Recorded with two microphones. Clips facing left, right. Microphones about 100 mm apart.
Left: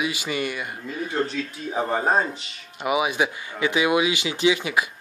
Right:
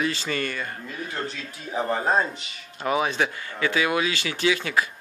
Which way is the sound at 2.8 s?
10° left (ahead or behind).